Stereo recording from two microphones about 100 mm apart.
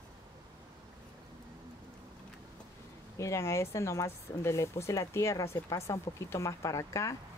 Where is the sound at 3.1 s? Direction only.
30° left (ahead or behind).